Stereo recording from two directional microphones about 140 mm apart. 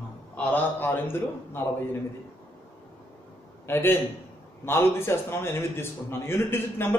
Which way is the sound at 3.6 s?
15° left (ahead or behind).